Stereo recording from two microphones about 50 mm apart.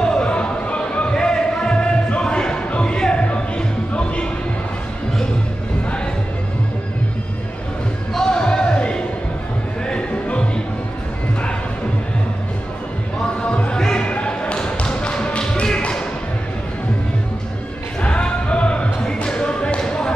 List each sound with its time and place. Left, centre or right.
0.0 s music: centre
8.1 s basketball bounce: centre
9.8 s music: left
13.4 s music: centre
14.0 s tap: left
18.0 s basketball bounce: left